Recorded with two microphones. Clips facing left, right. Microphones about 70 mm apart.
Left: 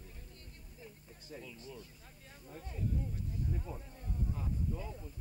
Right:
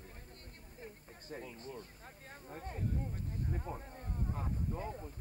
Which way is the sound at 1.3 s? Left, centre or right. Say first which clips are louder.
Right 3 dB; right.